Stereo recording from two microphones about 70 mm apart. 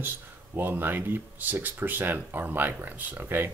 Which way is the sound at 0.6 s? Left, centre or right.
Right.